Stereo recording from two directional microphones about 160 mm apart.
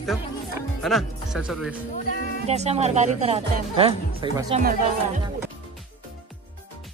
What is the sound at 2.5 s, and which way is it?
Speech, 45° right (ahead or behind).